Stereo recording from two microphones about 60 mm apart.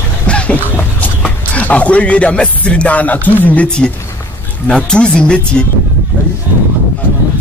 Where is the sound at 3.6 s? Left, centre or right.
Centre.